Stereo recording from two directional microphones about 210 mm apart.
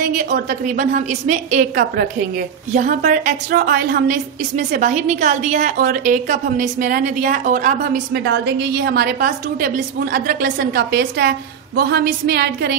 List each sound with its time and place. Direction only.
0.0 s a woman's voice: 40° right (ahead or behind)